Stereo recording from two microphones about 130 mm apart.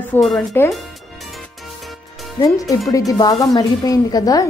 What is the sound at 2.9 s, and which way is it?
Speech, 25° left (ahead or behind).